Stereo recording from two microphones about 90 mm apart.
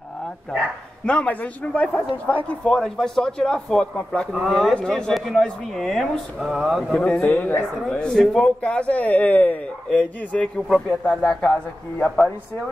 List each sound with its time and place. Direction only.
1.0 s a man's voice: 15° left (ahead or behind)
6.9 s a man's voice: 10° left (ahead or behind)